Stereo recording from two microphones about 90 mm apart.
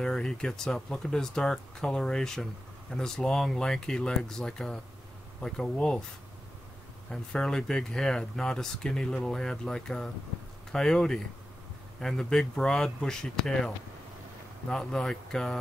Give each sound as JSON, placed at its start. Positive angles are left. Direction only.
{"t": 0.0, "sound": "speech", "side_deg": 10}
{"t": 7.1, "sound": "speech", "side_deg": 5}